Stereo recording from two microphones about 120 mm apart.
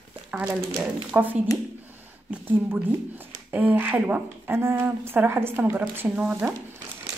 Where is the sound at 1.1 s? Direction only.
15° right (ahead or behind).